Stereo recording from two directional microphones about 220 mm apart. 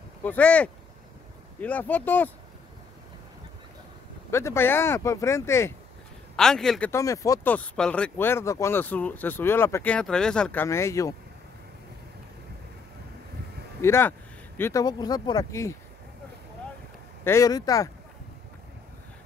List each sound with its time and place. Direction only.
0.2 s speech: 5° left (ahead or behind)
4.3 s speech: 10° left (ahead or behind)
13.7 s speech: 10° left (ahead or behind)
17.2 s speech: 15° left (ahead or behind)